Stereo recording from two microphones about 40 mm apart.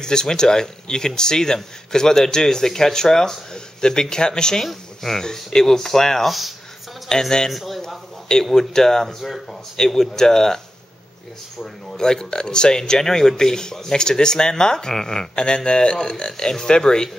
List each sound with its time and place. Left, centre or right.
0.0 s speech: centre
4.6 s speech: centre
7.5 s a sound: centre
8.5 s speech: centre
9.2 s speech: centre
9.8 s speech: centre
12.0 s speech: centre